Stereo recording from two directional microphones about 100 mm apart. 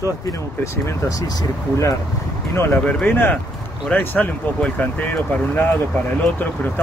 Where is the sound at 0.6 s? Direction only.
30° left (ahead or behind).